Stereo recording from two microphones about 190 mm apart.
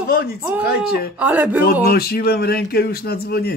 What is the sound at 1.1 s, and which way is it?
Speech, 10° right (ahead or behind).